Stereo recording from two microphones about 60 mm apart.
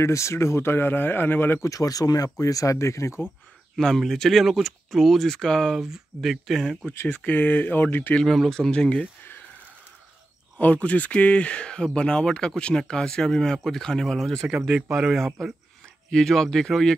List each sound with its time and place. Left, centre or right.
0.0 s speech: left
1.6 s speech: left
2.4 s speech: left
3.7 s speech: centre
5.8 s speech: centre
7.2 s speech: left
8.1 s speech: centre
10.6 s speech: left